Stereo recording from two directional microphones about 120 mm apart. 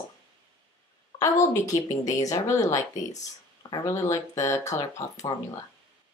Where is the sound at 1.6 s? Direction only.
30° left (ahead or behind).